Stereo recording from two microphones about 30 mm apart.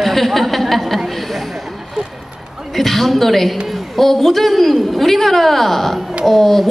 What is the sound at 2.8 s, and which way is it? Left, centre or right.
A woman's voice, centre.